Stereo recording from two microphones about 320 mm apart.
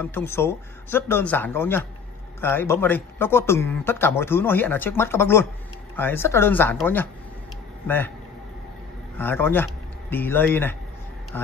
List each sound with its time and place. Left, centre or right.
0.0 s speech: centre
9.1 s speech: centre
11.3 s tick-tock: centre